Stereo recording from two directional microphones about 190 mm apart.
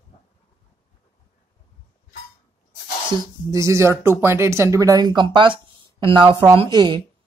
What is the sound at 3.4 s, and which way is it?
Speech, 15° right (ahead or behind).